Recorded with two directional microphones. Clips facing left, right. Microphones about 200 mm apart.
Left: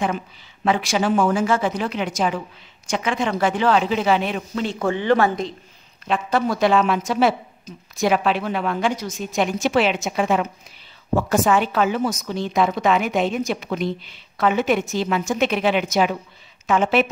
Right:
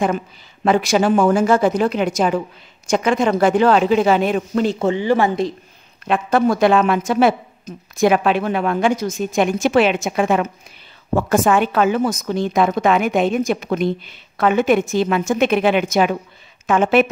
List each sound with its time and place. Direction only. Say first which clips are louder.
0.7 s speech: right 5 dB; 45° right (ahead or behind)
4.9 s a woman's voice: left 3 dB; 10° right (ahead or behind)
6.0 s speech: right 5 dB; 55° right (ahead or behind)